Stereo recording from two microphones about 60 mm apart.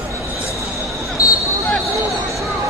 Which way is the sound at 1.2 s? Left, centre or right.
Left.